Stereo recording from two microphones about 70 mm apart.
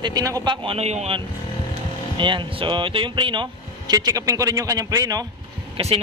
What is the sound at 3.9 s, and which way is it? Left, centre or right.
Speech, right.